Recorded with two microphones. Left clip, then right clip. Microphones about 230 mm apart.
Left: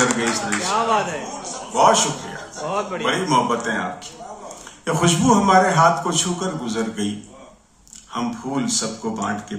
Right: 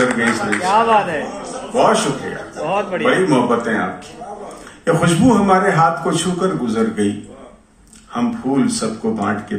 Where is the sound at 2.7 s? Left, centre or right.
Left.